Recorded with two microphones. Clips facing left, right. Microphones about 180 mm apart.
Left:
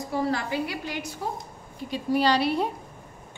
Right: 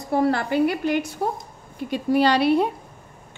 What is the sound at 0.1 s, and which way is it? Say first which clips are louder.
A woman's voice: right 7 dB; 60° right (ahead or behind).